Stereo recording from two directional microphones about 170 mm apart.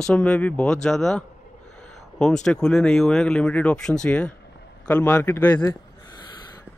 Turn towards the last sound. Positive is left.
turn(degrees=20)  # may be behind; listen again after turning